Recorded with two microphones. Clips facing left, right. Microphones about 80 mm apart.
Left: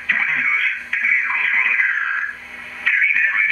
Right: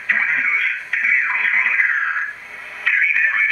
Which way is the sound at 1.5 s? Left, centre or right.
Right.